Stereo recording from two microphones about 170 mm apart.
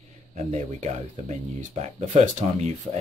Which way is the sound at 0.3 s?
40° right (ahead or behind).